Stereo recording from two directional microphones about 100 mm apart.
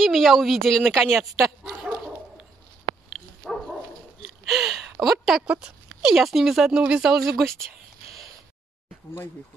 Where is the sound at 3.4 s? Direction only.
Centre (ahead or behind).